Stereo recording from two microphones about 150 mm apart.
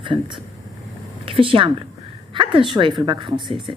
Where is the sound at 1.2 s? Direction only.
35° right (ahead or behind).